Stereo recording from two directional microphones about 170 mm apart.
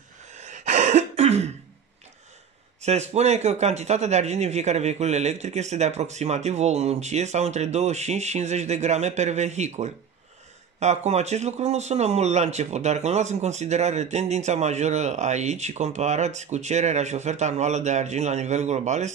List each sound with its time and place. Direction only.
0.4 s throat clearing: 40° right (ahead or behind)
2.8 s speech: 40° right (ahead or behind)